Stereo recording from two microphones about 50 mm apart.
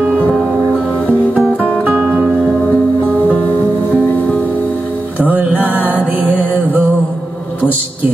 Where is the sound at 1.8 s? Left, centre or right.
Right.